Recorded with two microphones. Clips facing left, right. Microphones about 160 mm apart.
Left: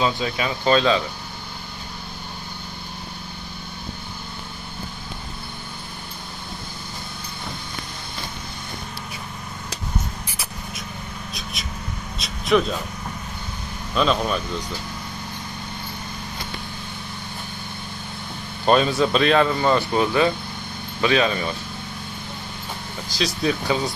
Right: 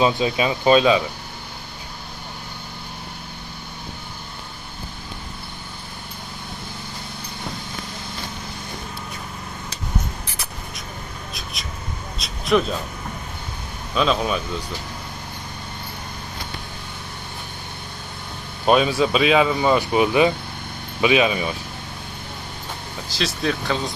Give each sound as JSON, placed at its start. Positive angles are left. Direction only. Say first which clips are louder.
{"t": 0.0, "sound": "speech", "louder": "right 4 dB", "side_deg": -20}
{"t": 12.2, "sound": "vehicle", "louder": "even", "side_deg": 0}
{"t": 13.9, "sound": "speech", "louder": "even", "side_deg": 0}
{"t": 18.7, "sound": "speech", "louder": "right 1 dB", "side_deg": -5}
{"t": 23.1, "sound": "speech", "louder": "left 1 dB", "side_deg": 0}